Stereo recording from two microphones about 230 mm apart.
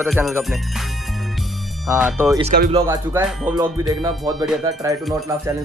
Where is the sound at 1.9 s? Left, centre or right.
Centre.